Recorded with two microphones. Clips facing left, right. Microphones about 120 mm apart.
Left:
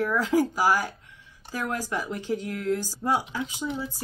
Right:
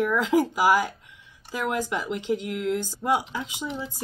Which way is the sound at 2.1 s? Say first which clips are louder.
Right 2 dB; 20° right (ahead or behind).